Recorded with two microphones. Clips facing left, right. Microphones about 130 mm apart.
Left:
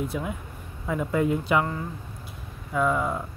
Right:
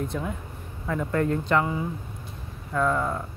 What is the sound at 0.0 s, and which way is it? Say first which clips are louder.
Speech: even; 10° left (ahead or behind).